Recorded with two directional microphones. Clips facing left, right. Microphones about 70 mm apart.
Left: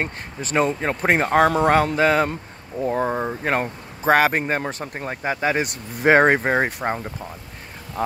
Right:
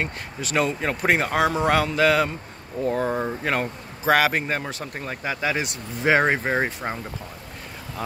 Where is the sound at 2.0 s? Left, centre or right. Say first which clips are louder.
Left 1 dB; left.